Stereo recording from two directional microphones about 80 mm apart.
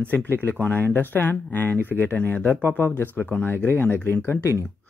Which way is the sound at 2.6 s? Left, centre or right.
Right.